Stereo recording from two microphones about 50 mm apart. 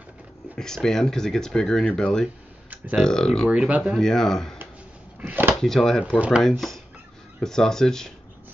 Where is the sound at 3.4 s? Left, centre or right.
Right.